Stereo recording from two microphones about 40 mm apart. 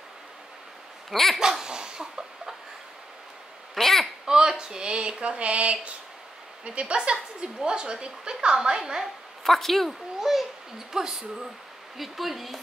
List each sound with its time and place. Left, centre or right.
1.1 s a woman's voice: centre
1.4 s a sound: centre
3.7 s a sound: centre
4.3 s a woman's voice: centre
9.0 s a woman's voice: centre
10.3 s a woman's voice: centre
12.0 s a woman's voice: centre